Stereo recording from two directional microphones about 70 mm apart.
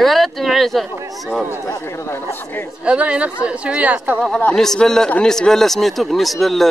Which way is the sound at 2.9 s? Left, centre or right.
Centre.